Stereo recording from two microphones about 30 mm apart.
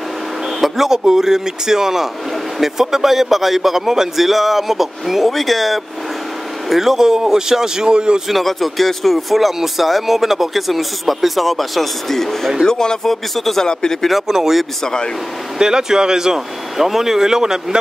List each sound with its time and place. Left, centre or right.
0.6 s speech: centre
6.7 s speech: centre; by 8.2 s right
8.3 s speech: centre
12.6 s speech: left
13.0 s speech: centre
14.2 s speech: centre
14.8 s speech: left
15.6 s speech: right
16.7 s speech: centre